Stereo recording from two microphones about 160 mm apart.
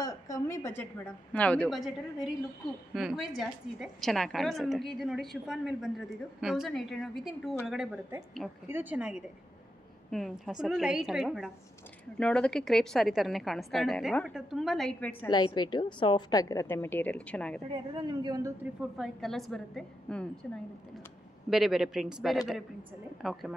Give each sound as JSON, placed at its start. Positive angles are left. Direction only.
{"t": 0.0, "sound": "a woman's voice", "side_deg": 20}
{"t": 2.9, "sound": "a woman's voice", "side_deg": 0}
{"t": 15.2, "sound": "a woman's voice", "side_deg": 25}
{"t": 17.9, "sound": "a woman's voice", "side_deg": -30}
{"t": 18.6, "sound": "a woman's voice", "side_deg": -5}
{"t": 21.5, "sound": "a woman's voice", "side_deg": 0}